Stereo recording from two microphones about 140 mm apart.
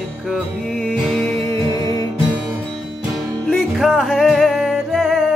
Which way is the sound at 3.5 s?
Centre (ahead or behind).